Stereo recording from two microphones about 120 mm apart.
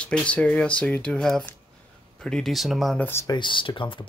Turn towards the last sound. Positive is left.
turn(degrees=45)  # may be behind; listen again after turning